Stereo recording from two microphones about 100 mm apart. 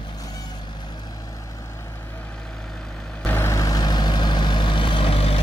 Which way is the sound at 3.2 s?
20° left (ahead or behind).